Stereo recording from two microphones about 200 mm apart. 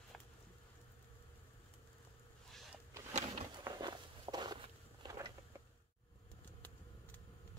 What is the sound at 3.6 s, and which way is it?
Walk, 20° right (ahead or behind).